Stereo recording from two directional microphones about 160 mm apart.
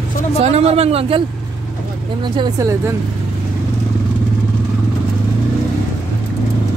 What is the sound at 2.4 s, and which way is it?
Speech, 20° right (ahead or behind).